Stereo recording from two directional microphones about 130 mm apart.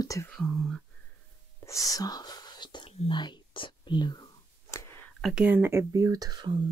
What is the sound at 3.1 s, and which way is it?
Speech, 35° left (ahead or behind).